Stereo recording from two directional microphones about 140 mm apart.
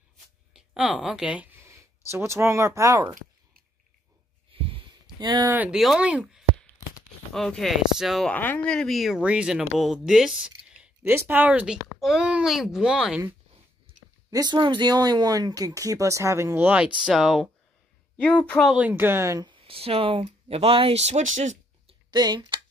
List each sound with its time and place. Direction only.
0.5 s a woman's voice: 5° right (ahead or behind)
1.6 s speech: 20° right (ahead or behind)
4.6 s heart sounds: 40° right (ahead or behind)
5.5 s speech: 10° right (ahead or behind)
8.3 s speech: 10° left (ahead or behind); by 13.2 s 5° right (ahead or behind)
14.3 s speech: 30° right (ahead or behind); by 18.7 s 10° left (ahead or behind)
18.7 s speech: 10° right (ahead or behind)
19.4 s speech: 40° right (ahead or behind); by 21.5 s 60° right (ahead or behind)
22.1 s speech: 30° right (ahead or behind)